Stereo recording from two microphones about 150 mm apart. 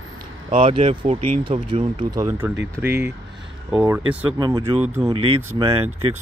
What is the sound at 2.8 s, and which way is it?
Speech, 15° right (ahead or behind).